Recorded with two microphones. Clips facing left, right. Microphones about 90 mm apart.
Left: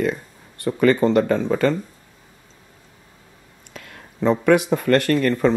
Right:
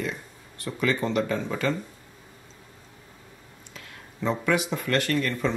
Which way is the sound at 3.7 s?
55° left (ahead or behind).